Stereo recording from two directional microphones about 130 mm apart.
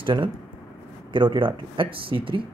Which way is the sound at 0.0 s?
40° right (ahead or behind).